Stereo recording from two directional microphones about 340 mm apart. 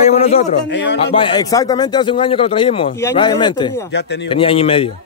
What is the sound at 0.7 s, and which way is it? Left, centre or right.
Speech, left.